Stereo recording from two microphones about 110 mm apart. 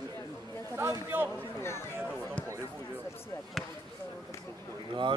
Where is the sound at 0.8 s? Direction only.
20° right (ahead or behind).